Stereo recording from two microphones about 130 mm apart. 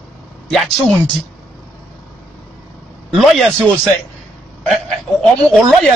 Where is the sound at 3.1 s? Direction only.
Centre (ahead or behind).